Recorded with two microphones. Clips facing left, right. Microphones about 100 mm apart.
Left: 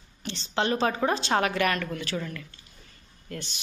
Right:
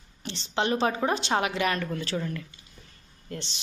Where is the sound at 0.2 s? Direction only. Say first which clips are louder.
Even; 25° right (ahead or behind).